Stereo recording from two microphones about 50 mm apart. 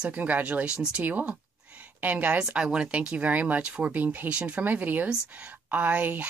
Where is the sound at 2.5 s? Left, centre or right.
Centre.